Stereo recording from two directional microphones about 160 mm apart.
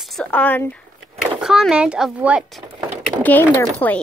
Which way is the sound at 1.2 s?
5° right (ahead or behind).